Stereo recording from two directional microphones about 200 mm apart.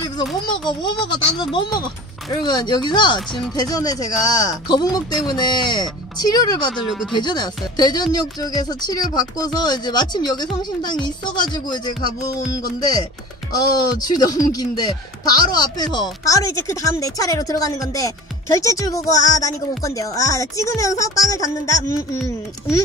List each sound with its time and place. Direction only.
0.5 s speech: 20° left (ahead or behind)
13.7 s speech: 20° left (ahead or behind)